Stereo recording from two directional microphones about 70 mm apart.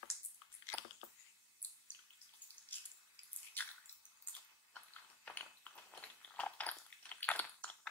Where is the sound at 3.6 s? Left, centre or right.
Left.